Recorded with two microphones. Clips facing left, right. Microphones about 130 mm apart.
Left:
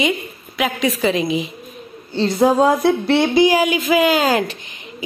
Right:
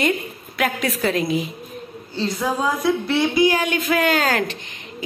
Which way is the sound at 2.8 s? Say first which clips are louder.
Left 4 dB; 65° left (ahead or behind).